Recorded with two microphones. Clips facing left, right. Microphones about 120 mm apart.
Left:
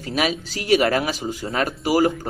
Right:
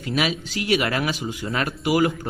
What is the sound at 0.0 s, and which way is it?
Speech, 40° left (ahead or behind).